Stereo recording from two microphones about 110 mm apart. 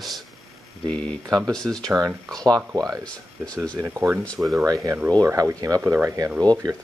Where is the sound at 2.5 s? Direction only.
35° right (ahead or behind).